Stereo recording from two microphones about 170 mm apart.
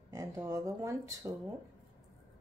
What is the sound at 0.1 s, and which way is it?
Speech, 20° right (ahead or behind).